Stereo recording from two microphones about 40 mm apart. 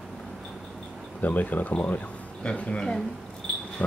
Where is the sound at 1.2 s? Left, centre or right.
Left.